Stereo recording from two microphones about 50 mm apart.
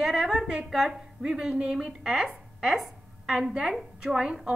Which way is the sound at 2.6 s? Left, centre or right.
Centre.